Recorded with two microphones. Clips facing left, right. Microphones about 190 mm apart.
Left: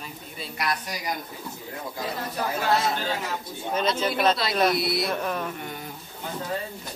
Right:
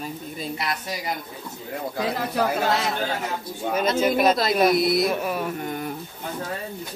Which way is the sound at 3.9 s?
10° right (ahead or behind).